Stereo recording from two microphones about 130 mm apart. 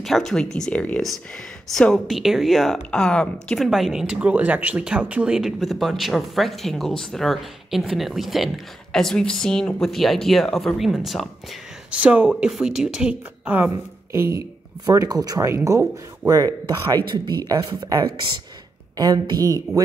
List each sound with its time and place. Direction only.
0.0 s a woman's voice: centre (ahead or behind)
14.1 s speech: 20° right (ahead or behind)